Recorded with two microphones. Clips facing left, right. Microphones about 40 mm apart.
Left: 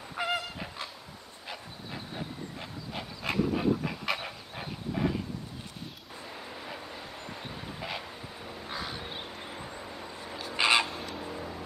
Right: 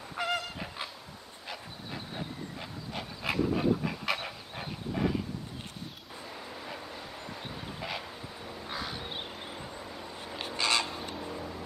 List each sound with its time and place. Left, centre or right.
0.1 s honk: centre
1.5 s dog: centre
7.2 s a sound: centre
8.6 s crow: centre
10.5 s a sound: centre
11.1 s vehicle: centre